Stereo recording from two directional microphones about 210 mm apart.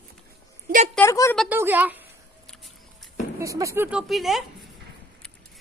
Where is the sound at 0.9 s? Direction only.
15° left (ahead or behind).